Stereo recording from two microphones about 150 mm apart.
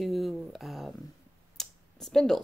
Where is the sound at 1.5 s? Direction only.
Centre (ahead or behind).